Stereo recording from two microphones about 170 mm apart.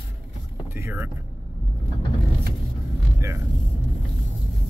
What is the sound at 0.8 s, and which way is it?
Speech, 15° right (ahead or behind).